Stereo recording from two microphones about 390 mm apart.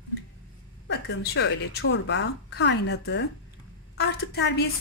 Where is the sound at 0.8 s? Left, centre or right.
Left.